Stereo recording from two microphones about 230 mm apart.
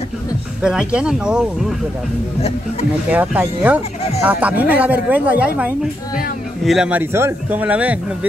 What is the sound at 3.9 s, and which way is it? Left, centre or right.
Speech, left.